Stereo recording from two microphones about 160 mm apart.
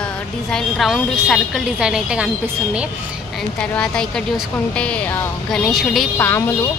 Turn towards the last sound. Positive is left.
turn(degrees=0)  # may be behind; listen again after turning